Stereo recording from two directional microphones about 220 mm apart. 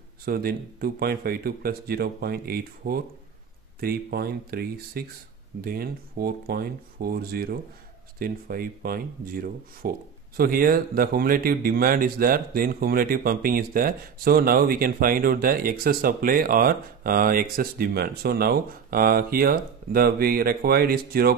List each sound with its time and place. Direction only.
0.2 s speech: 45° right (ahead or behind)